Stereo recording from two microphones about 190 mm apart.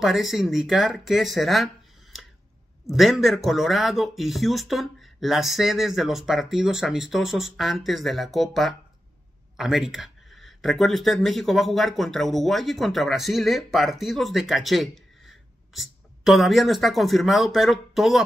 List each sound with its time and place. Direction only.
0.0 s speech: centre (ahead or behind)
2.9 s speech: centre (ahead or behind)